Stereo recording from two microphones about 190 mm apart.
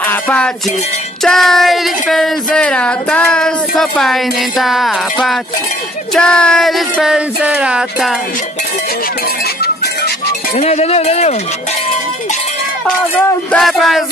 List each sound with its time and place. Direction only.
0.0 s music: 5° left (ahead or behind)
1.2 s speech: centre (ahead or behind)
10.5 s speech: 35° left (ahead or behind)
13.5 s speech: centre (ahead or behind)